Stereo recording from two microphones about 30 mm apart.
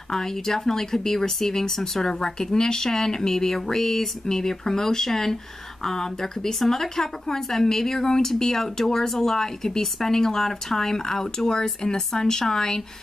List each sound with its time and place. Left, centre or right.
0.1 s speech: centre